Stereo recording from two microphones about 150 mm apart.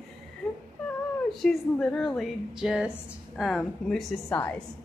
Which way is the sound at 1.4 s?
Centre (ahead or behind).